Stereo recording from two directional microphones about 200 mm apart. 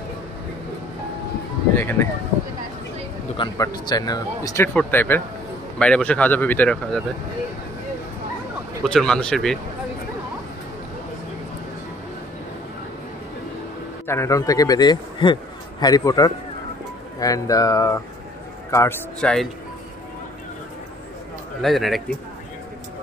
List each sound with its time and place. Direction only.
1.8 s speech: 10° left (ahead or behind)
3.3 s speech: 20° left (ahead or behind)
8.8 s speech: 5° left (ahead or behind)
14.0 s a man's voice: 15° left (ahead or behind)
21.5 s speech: centre (ahead or behind)